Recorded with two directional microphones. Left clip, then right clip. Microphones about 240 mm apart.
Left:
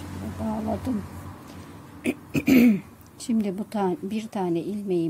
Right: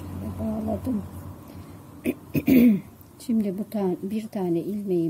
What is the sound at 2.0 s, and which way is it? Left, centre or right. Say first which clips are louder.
Speech: even; centre.